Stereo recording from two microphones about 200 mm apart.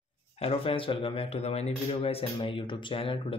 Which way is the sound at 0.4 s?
30° left (ahead or behind).